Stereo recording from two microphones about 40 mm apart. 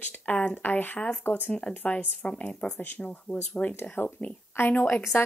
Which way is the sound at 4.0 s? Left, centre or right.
Left.